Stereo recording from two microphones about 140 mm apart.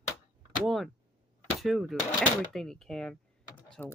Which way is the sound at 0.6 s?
Centre (ahead or behind).